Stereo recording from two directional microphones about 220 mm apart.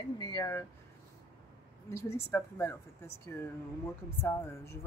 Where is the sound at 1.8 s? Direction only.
10° left (ahead or behind).